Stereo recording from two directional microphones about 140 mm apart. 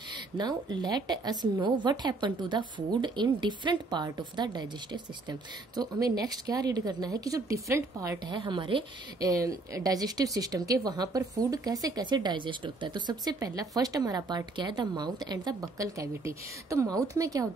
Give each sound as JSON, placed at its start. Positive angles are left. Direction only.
{"t": 0.4, "sound": "speech", "side_deg": -30}
{"t": 8.4, "sound": "a woman's voice", "side_deg": -35}
{"t": 9.3, "sound": "speech", "side_deg": -25}